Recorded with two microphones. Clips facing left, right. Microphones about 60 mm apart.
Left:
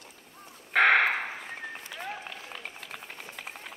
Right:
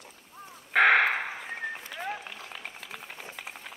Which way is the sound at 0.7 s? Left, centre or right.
Centre.